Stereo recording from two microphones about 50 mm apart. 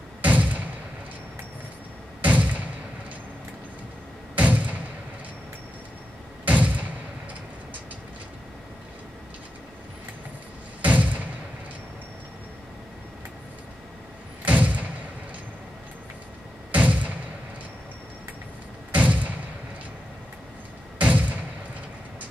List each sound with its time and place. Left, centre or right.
0.2 s thump: right
2.2 s thump: right
4.4 s thump: right
6.4 s door: right
10.8 s a sound: right
14.4 s door: right
16.7 s a sound: right
18.9 s thump: right
21.0 s thump: right